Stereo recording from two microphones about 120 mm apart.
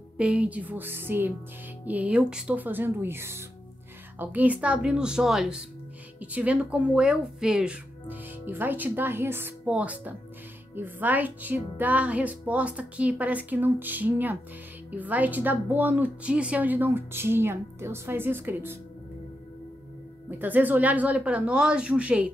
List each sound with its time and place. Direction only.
0.2 s a woman's voice: 10° right (ahead or behind)
20.2 s a woman's voice: 15° right (ahead or behind)